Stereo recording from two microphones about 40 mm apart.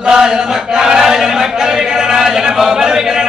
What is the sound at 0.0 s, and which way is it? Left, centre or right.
Chant, centre.